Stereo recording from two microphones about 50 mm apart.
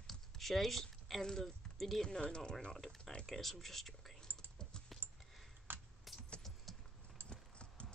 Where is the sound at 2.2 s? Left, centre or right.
Centre.